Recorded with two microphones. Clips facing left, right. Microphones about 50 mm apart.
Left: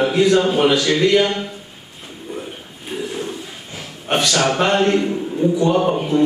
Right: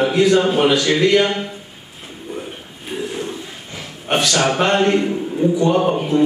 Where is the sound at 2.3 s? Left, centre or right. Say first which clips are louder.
Even; centre.